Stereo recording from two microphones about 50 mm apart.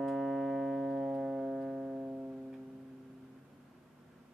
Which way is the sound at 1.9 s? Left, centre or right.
Right.